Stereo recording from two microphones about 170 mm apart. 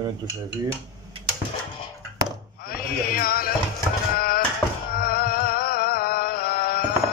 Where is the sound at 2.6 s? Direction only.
60° left (ahead or behind).